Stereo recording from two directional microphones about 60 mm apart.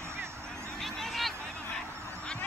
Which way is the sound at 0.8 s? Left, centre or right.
Centre.